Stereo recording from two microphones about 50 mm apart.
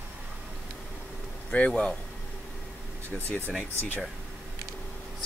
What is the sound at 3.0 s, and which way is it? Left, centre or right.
Speech, left.